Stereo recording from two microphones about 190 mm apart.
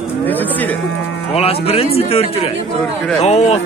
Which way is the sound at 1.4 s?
30° left (ahead or behind).